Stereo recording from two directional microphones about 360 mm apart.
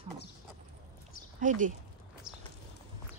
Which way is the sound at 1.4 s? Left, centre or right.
Right.